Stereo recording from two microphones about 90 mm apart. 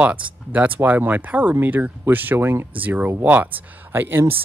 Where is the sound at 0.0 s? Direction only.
15° right (ahead or behind).